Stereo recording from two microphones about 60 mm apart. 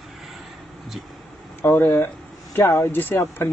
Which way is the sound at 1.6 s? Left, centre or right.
Left.